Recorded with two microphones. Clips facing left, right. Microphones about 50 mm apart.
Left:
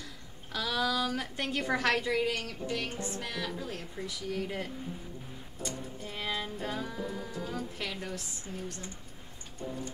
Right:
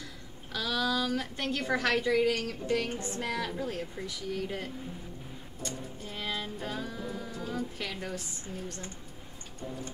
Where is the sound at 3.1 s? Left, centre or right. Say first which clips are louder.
Right 3 dB; right.